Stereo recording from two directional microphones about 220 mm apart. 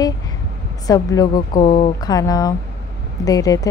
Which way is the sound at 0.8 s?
15° left (ahead or behind).